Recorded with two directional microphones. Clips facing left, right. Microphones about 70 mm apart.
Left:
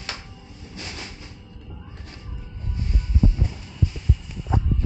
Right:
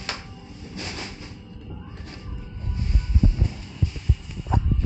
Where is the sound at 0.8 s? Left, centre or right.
Right.